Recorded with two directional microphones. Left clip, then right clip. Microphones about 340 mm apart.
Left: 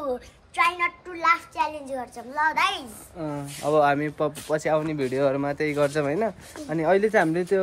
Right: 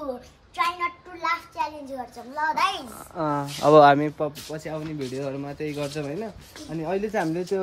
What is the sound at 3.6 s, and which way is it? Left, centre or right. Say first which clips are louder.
Speech: right 6 dB; right.